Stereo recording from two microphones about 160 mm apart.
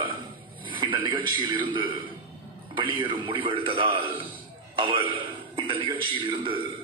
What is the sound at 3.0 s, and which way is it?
A man's voice, 30° right (ahead or behind).